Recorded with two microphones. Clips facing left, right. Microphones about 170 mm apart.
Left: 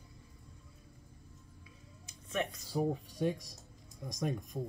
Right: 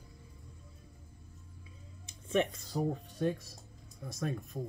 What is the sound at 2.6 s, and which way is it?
Speech, 10° left (ahead or behind).